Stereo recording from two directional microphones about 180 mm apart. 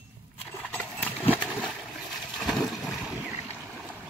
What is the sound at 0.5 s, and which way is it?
Horse, 5° left (ahead or behind).